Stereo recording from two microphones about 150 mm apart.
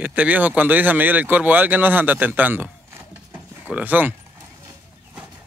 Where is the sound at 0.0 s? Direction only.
10° right (ahead or behind).